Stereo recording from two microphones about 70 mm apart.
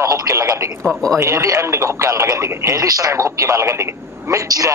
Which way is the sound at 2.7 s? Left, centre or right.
Right.